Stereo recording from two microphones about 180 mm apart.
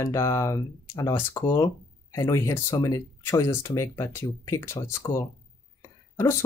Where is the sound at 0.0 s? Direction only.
15° left (ahead or behind).